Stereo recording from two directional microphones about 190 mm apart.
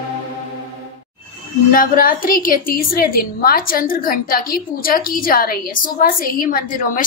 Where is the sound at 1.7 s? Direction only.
45° left (ahead or behind).